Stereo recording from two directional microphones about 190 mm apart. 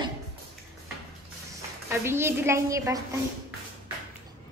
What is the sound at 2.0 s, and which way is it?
A woman's voice, 15° right (ahead or behind).